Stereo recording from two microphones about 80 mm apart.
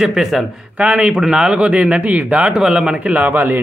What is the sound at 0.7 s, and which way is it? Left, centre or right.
Speech, centre.